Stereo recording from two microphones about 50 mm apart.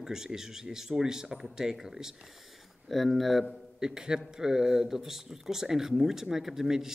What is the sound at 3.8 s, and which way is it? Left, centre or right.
Speech, centre.